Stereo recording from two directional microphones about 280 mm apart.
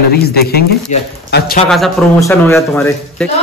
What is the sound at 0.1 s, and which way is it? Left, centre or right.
Speech, left.